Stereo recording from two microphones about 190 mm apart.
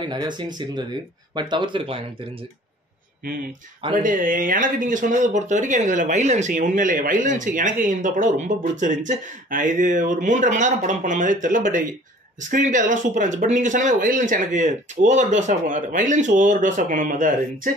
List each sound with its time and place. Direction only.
0.0 s speech: 25° right (ahead or behind)
3.9 s speech: 45° right (ahead or behind)